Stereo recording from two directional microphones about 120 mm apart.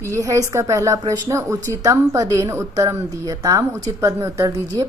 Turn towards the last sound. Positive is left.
turn(degrees=-25)  # may be behind; listen again after turning